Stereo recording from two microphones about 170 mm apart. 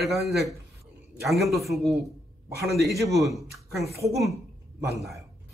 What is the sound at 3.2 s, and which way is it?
Speech, centre (ahead or behind).